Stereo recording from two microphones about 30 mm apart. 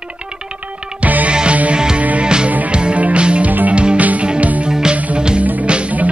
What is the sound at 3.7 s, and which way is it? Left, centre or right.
Music, right.